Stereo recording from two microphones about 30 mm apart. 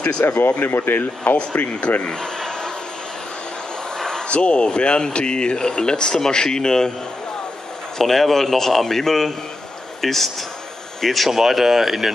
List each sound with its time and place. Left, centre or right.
0.6 s speech: left
1.2 s speech: left
2.0 s a sound: centre
4.0 s a sound: centre
4.3 s speech: left; by 6.9 s centre
8.0 s speech: centre